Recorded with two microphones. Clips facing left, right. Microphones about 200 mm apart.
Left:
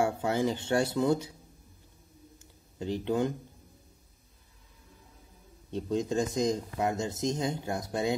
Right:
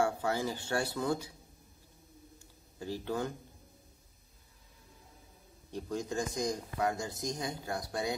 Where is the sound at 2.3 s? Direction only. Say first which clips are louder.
Left 9 dB; 20° left (ahead or behind).